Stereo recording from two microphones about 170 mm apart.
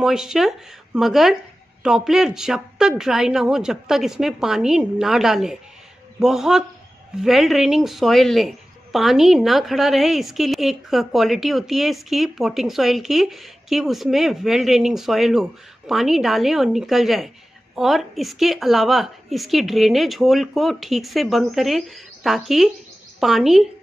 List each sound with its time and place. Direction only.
0.0 s a woman's voice: 5° right (ahead or behind)